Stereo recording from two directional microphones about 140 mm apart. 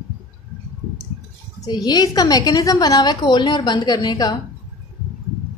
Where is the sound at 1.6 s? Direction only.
30° left (ahead or behind).